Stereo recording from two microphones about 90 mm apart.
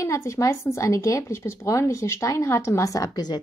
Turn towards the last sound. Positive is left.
turn(degrees=45)  # may be behind; listen again after turning